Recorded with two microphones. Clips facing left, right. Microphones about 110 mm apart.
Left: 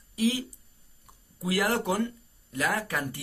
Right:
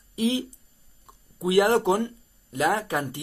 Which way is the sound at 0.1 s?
20° right (ahead or behind).